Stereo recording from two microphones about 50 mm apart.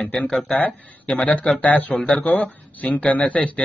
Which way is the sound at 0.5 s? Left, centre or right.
Left.